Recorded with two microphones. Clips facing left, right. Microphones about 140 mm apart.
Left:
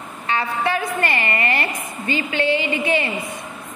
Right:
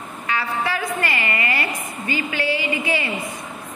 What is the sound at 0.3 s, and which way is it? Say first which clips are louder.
A woman's voice: left 3 dB; 25° left (ahead or behind).